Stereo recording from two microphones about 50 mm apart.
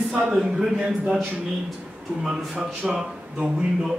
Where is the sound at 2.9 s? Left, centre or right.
Centre.